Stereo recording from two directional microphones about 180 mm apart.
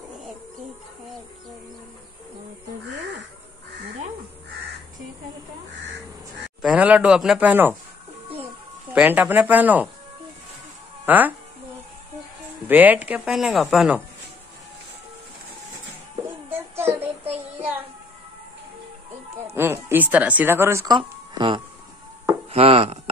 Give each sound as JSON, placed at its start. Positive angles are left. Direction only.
{"t": 6.6, "sound": "speech", "side_deg": -10}
{"t": 8.9, "sound": "speech", "side_deg": -10}
{"t": 11.1, "sound": "speech", "side_deg": -10}
{"t": 12.6, "sound": "speech", "side_deg": -10}
{"t": 16.4, "sound": "child singing", "side_deg": -15}
{"t": 19.5, "sound": "speech", "side_deg": -10}